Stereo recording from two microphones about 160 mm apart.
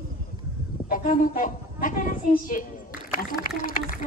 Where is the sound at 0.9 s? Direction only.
55° left (ahead or behind).